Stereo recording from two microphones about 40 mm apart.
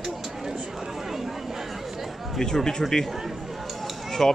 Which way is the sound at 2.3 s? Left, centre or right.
Centre.